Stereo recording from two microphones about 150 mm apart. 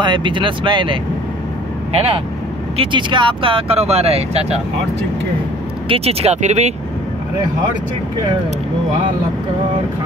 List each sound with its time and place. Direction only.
0.0 s speech: 30° right (ahead or behind)
2.0 s speech: 40° right (ahead or behind)
5.9 s speech: 40° right (ahead or behind)